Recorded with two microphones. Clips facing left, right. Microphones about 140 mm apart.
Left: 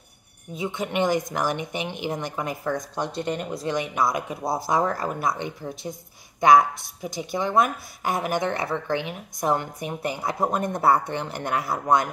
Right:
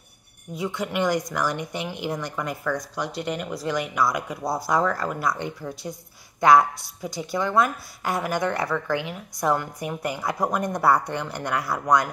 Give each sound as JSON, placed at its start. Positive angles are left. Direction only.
{"t": 0.6, "sound": "a woman's voice", "side_deg": 20}